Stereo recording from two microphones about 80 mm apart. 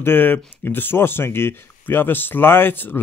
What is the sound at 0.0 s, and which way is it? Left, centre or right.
Speech, left.